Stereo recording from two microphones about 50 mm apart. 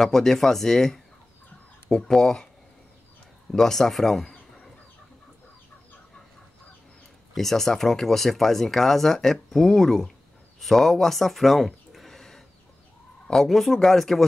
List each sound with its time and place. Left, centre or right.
0.0 s speech: centre
3.5 s speech: centre
7.3 s speech: centre